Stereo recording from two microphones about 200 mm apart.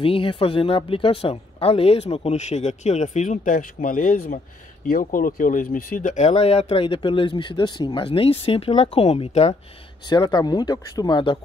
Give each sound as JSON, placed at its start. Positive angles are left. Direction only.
{"t": 0.0, "sound": "speech", "side_deg": 25}
{"t": 10.0, "sound": "speech", "side_deg": 20}